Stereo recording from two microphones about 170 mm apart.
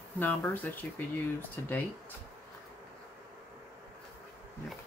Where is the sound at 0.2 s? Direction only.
10° left (ahead or behind).